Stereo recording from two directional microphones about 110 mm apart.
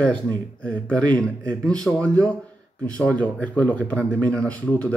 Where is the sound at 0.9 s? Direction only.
10° left (ahead or behind).